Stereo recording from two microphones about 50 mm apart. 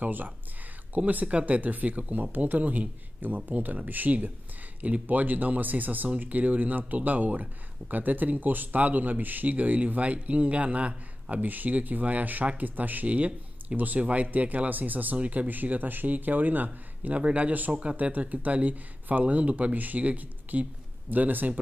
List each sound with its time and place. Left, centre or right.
0.0 s speech: right